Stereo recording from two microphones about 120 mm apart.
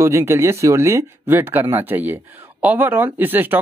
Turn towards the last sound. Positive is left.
turn(degrees=-15)  # may be behind; listen again after turning